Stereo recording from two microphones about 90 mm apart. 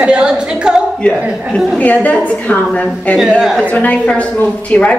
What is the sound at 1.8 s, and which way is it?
A woman's voice, 15° left (ahead or behind).